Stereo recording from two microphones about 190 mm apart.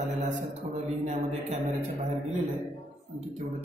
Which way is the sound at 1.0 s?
35° right (ahead or behind).